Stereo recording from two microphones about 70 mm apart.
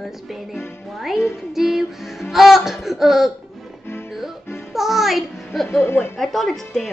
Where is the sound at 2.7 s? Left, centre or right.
Centre.